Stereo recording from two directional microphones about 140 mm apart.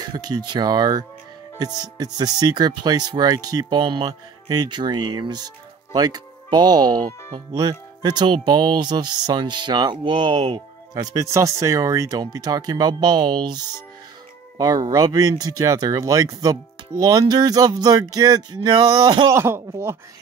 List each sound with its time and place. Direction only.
0.0 s speech: 30° right (ahead or behind)
11.1 s speech: 20° right (ahead or behind)